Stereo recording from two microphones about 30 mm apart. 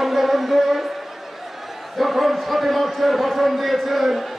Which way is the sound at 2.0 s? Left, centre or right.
Centre.